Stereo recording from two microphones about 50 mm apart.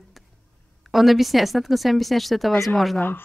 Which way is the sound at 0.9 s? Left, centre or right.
Centre.